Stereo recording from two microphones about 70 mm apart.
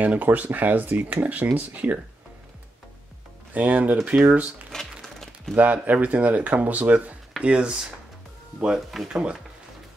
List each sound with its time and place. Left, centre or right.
0.0 s speech: right
3.5 s speech: right
4.7 s crumpling: centre
5.6 s speech: right
8.6 s speech: centre